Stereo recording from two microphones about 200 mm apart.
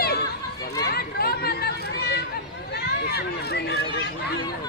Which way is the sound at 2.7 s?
55° left (ahead or behind).